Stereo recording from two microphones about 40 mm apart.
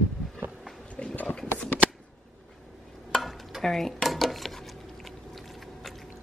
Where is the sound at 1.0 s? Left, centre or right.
Left.